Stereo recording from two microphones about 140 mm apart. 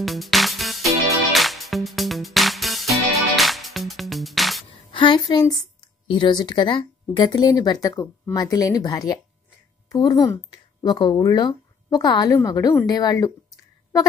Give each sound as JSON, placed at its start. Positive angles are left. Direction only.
{"t": 0.0, "sound": "music", "side_deg": 0}
{"t": 4.9, "sound": "a woman's voice", "side_deg": 35}